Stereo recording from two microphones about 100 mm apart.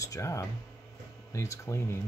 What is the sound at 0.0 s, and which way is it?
Speech, 30° left (ahead or behind).